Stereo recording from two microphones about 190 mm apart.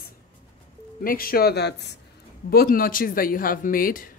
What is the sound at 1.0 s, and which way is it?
Speech, 50° left (ahead or behind).